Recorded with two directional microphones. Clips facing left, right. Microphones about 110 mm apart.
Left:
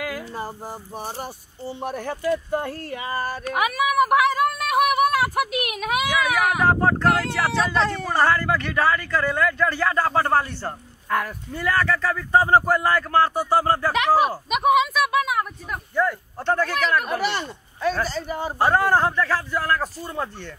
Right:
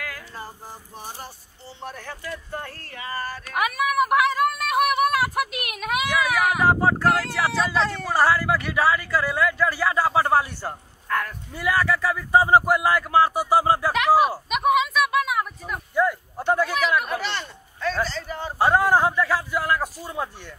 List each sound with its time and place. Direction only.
0.0 s a sound: 15° left (ahead or behind)
0.9 s speech: 15° left (ahead or behind)
3.5 s speech: centre (ahead or behind)
11.1 s speech: 10° left (ahead or behind)
11.5 s speech: 10° right (ahead or behind)
17.1 s speech: 10° left (ahead or behind)
18.6 s speech: 10° right (ahead or behind)